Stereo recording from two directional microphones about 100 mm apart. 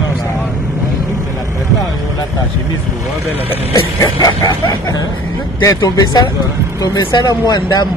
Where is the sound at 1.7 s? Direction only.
35° left (ahead or behind).